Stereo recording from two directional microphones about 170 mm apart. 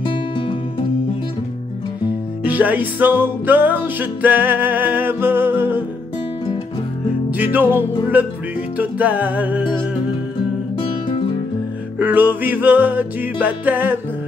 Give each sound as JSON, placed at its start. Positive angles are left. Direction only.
{"t": 0.0, "sound": "music", "side_deg": 30}
{"t": 2.4, "sound": "music", "side_deg": -10}
{"t": 7.2, "sound": "music", "side_deg": -10}
{"t": 10.8, "sound": "music", "side_deg": 30}
{"t": 12.0, "sound": "music", "side_deg": -10}